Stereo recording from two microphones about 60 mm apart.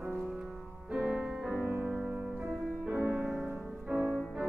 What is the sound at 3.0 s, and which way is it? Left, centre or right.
Music, right.